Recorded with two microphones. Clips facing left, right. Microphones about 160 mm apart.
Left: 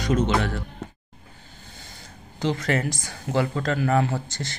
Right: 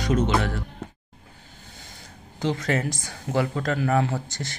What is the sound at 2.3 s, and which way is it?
Speech, 20° right (ahead or behind).